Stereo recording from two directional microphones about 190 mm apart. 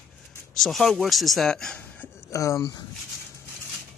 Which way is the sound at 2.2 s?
15° left (ahead or behind).